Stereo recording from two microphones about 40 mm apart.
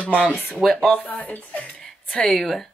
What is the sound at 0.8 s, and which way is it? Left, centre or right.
Speech, left.